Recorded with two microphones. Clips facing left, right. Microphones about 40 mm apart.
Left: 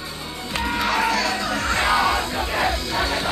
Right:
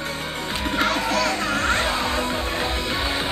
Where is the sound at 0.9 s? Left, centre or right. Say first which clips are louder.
Left 2 dB; left.